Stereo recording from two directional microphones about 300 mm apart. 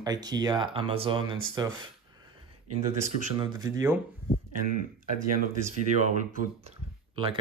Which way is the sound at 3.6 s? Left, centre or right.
Centre.